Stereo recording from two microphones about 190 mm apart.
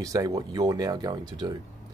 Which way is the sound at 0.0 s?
20° right (ahead or behind).